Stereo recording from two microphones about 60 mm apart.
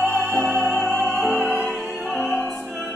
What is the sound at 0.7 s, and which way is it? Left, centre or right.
Music, centre.